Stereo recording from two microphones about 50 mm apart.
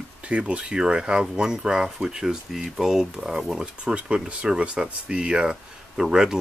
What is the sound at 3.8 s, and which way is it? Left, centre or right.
Speech, centre.